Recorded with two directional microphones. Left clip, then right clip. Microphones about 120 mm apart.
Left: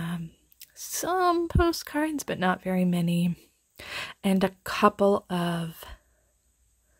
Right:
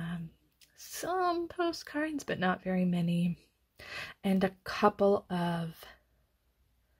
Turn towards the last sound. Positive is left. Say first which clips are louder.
# left 4 dB
turn(degrees=40)  # may be behind; listen again after turning